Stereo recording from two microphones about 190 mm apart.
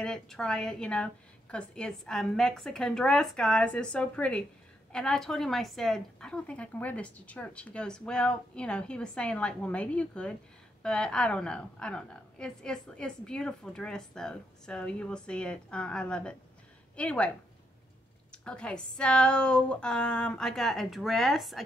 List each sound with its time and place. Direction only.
0.0 s a woman's voice: 5° left (ahead or behind)
18.3 s a woman's voice: 5° left (ahead or behind)